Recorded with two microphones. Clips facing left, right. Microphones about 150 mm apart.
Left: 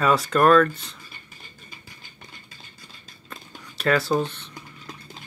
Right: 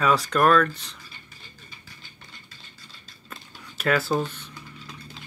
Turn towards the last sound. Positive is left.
turn(degrees=-5)  # may be behind; listen again after turning